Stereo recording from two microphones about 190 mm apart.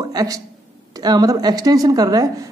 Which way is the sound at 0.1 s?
20° right (ahead or behind).